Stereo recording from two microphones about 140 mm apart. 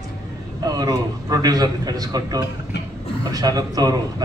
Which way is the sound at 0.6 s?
30° right (ahead or behind).